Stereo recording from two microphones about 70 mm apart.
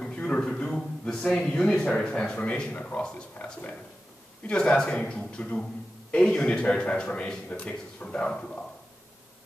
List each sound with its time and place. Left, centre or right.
0.0 s a sound: centre
0.4 s a man's voice: centre
4.4 s a man's voice: centre